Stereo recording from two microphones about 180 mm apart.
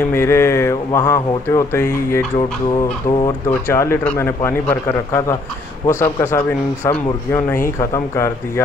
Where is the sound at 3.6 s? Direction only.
15° left (ahead or behind).